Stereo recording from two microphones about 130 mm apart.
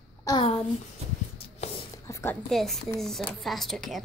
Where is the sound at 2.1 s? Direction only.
20° left (ahead or behind).